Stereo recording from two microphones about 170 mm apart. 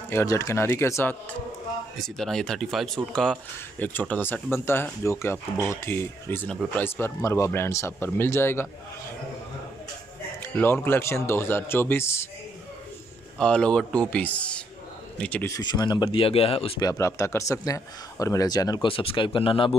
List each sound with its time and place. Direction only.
0.1 s a man's voice: 15° left (ahead or behind)
2.0 s a man's voice: centre (ahead or behind)
10.4 s a man's voice: 15° left (ahead or behind)
13.4 s a man's voice: 5° left (ahead or behind); by 16.7 s 35° left (ahead or behind)
16.8 s a man's voice: 20° left (ahead or behind)